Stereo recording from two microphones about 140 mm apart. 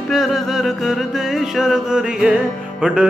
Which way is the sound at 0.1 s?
Centre (ahead or behind).